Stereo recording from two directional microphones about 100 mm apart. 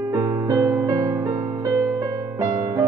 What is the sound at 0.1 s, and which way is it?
Music, 30° right (ahead or behind).